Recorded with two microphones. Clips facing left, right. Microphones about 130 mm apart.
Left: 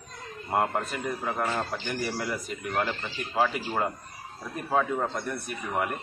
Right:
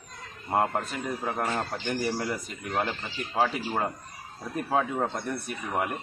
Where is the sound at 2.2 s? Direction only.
15° right (ahead or behind).